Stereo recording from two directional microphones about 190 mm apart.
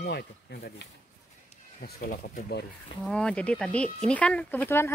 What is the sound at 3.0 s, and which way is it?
Speech, 5° left (ahead or behind).